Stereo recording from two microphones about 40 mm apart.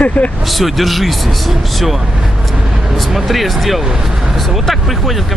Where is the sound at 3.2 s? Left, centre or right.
Centre.